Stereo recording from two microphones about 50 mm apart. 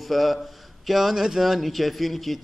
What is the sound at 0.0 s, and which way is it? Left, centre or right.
Speech, centre.